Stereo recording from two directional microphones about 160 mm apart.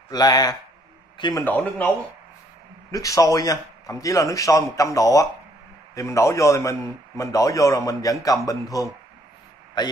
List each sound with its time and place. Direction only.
0.1 s a man's voice: 25° left (ahead or behind)
1.4 s speech: 10° left (ahead or behind)
2.9 s a man's voice: 20° left (ahead or behind)